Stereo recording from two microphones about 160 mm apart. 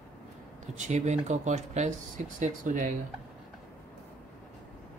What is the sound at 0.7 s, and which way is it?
Speech, 45° right (ahead or behind).